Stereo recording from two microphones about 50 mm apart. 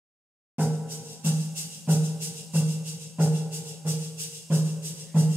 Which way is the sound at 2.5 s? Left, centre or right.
Right.